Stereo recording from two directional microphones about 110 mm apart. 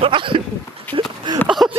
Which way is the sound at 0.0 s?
50° right (ahead or behind).